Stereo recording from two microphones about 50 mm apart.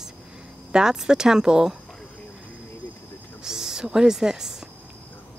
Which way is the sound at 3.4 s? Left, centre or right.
Centre.